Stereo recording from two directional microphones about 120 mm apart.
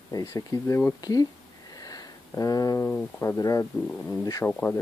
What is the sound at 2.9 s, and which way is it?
Speech, 20° left (ahead or behind).